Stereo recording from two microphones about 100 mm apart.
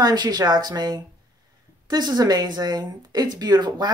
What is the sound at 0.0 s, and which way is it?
Speech, 45° right (ahead or behind).